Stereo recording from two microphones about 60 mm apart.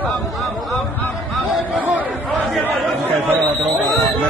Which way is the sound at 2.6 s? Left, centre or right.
Right.